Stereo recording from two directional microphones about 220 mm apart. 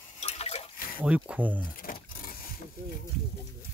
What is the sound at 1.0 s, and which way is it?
Speech, 5° right (ahead or behind).